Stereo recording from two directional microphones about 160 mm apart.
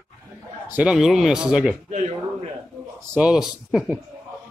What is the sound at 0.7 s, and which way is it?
Speech, 5° right (ahead or behind).